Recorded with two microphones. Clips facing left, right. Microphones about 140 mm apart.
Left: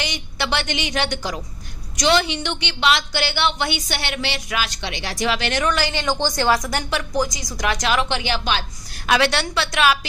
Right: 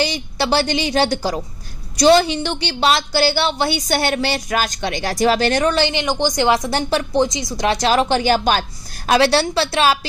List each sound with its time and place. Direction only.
0.0 s a woman's voice: 35° right (ahead or behind)